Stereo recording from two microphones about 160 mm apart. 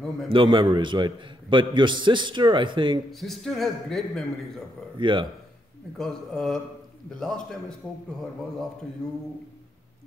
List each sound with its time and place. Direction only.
0.3 s a man's voice: 30° right (ahead or behind)
3.1 s a man's voice: centre (ahead or behind)
4.9 s speech: 30° right (ahead or behind)
5.9 s a man's voice: 5° left (ahead or behind)